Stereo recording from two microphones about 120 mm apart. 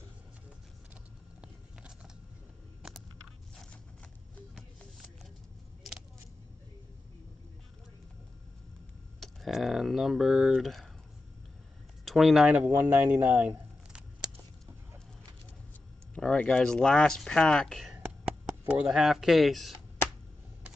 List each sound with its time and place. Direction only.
9.2 s speech: centre (ahead or behind)
12.0 s speech: centre (ahead or behind)
12.5 s a man's voice: 15° right (ahead or behind)
12.9 s a sound: 15° right (ahead or behind)
16.2 s speech: 5° left (ahead or behind)
17.9 s a sound: 10° right (ahead or behind)